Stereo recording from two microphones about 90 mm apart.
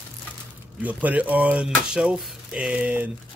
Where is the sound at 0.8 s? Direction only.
15° right (ahead or behind).